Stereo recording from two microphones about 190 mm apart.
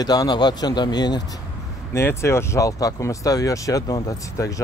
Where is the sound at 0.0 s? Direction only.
20° left (ahead or behind).